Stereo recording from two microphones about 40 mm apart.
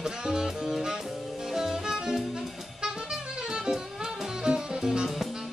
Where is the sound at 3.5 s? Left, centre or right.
Centre.